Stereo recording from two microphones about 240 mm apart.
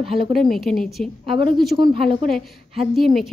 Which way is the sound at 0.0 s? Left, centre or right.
Right.